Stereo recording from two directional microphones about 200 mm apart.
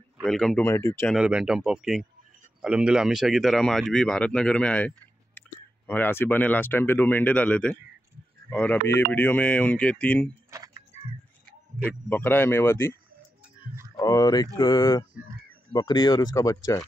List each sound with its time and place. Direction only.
0.2 s speech: centre (ahead or behind)
0.7 s speech: 15° left (ahead or behind)
1.1 s speech: 5° right (ahead or behind)
10.5 s a sound: 15° right (ahead or behind)
12.1 s speech: 10° left (ahead or behind)
13.9 s speech: 20° left (ahead or behind)